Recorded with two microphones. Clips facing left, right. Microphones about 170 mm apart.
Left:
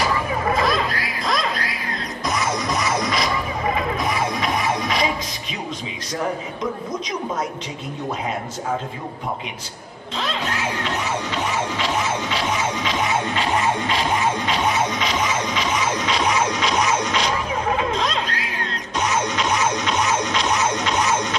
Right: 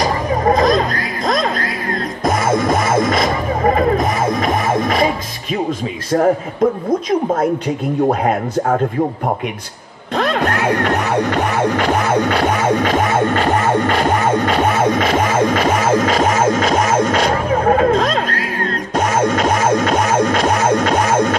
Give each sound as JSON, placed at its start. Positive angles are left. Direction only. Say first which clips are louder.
{"t": 0.0, "sound": "music", "louder": "right 6 dB", "side_deg": -40}
{"t": 6.1, "sound": "a man's voice", "louder": "right 11 dB", "side_deg": -55}
{"t": 10.1, "sound": "music", "louder": "right 9 dB", "side_deg": -55}